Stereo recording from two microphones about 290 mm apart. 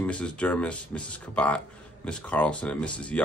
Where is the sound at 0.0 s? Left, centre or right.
Centre.